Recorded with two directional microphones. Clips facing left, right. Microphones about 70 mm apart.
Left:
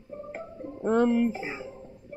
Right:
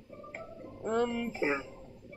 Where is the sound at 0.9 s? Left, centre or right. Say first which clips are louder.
Left 8 dB; left.